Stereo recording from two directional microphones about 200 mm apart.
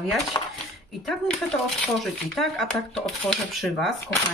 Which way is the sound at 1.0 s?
Centre (ahead or behind).